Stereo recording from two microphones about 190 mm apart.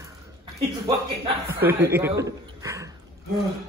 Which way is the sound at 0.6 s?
30° right (ahead or behind).